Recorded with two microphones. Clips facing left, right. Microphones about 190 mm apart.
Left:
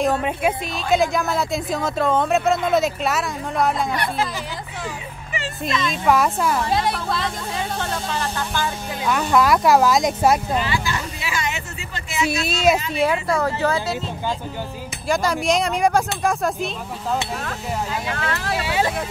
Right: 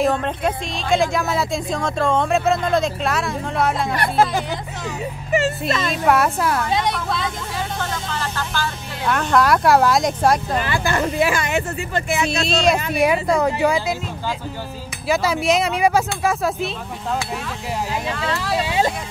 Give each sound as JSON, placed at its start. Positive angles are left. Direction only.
{"t": 0.0, "sound": "speech", "side_deg": 5}
{"t": 4.0, "sound": "speech", "side_deg": -50}
{"t": 6.0, "sound": "speech", "side_deg": 0}
{"t": 9.0, "sound": "speech", "side_deg": 5}
{"t": 10.6, "sound": "speech", "side_deg": -55}
{"t": 12.3, "sound": "speech", "side_deg": 5}
{"t": 12.9, "sound": "speech", "side_deg": -15}
{"t": 15.0, "sound": "speech", "side_deg": -5}
{"t": 18.6, "sound": "speech", "side_deg": -25}